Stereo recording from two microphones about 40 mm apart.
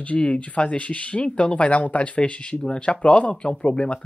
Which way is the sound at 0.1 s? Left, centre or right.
Left.